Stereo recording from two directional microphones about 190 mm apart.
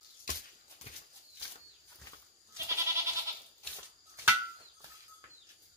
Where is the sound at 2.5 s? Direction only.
15° right (ahead or behind).